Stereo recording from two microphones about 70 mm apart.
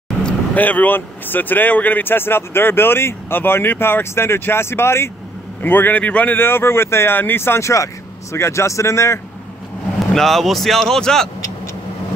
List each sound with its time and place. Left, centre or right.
0.2 s vehicle: centre
0.7 s speech: left
10.1 s speech: centre